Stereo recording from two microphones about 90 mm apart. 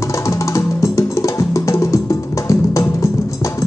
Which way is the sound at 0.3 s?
35° left (ahead or behind).